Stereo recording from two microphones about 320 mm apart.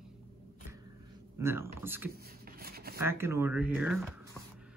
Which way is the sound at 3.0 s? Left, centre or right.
Centre.